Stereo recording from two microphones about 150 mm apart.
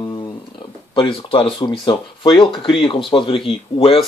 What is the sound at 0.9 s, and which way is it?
Speech, 35° left (ahead or behind).